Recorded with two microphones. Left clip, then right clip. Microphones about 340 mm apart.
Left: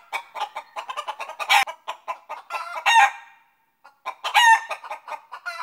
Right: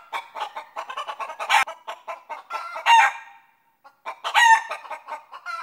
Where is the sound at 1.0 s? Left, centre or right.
Centre.